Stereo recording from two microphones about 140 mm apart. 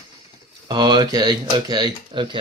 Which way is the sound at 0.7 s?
30° right (ahead or behind).